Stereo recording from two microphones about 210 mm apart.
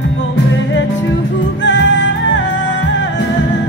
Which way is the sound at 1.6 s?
60° left (ahead or behind).